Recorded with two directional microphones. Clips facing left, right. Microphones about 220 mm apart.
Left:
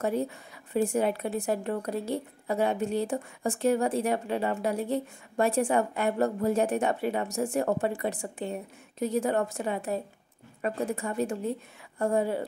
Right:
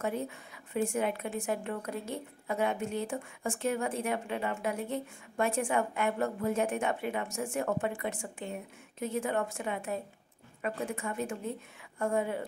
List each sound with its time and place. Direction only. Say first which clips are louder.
0.7 s speech: left 5 dB; 35° left (ahead or behind)